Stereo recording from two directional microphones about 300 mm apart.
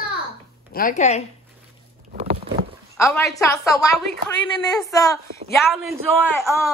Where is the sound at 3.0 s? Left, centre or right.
Centre.